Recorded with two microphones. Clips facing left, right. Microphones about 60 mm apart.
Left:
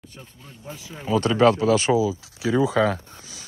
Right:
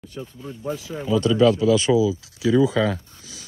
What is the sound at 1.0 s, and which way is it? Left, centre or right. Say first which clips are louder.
Speech: even; left.